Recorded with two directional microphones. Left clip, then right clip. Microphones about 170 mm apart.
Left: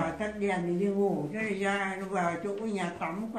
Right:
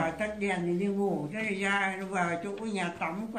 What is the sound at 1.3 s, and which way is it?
Speech, 15° right (ahead or behind).